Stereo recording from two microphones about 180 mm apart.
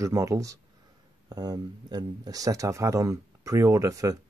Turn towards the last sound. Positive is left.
turn(degrees=-20)  # may be behind; listen again after turning